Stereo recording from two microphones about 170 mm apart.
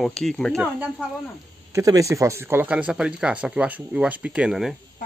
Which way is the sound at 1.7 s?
20° right (ahead or behind).